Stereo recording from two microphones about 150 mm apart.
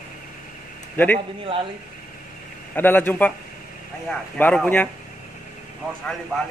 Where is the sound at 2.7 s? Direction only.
10° left (ahead or behind).